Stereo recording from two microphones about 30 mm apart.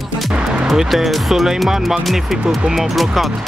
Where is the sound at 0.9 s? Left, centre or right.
Centre.